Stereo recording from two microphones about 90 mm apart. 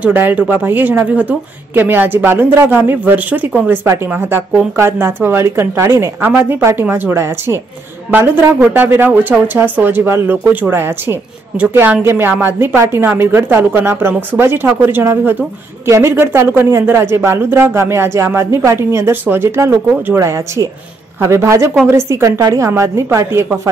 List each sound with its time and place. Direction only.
0.0 s speech: 20° right (ahead or behind)